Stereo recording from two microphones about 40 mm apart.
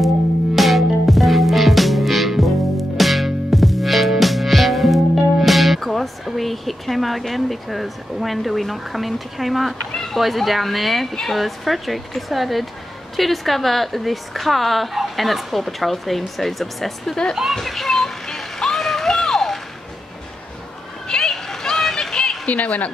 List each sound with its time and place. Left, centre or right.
0.6 s music: centre
10.1 s a woman's voice: centre
17.6 s music: centre
21.1 s a sound: centre
22.5 s speech: left